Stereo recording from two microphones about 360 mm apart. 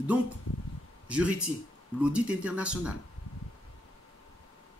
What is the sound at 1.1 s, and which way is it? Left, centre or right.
Speech, centre.